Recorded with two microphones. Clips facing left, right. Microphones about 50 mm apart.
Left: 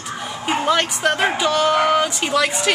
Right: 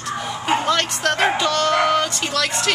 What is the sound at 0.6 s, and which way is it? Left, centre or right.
Speech, centre.